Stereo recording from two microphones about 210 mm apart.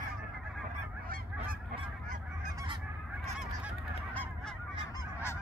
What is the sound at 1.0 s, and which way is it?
Goose, 45° right (ahead or behind).